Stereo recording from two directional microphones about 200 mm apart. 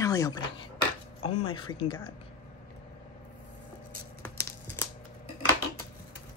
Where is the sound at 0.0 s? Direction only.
15° left (ahead or behind).